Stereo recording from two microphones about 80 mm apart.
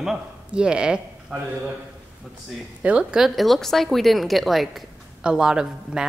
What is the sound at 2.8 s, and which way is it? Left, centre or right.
A woman's voice, centre.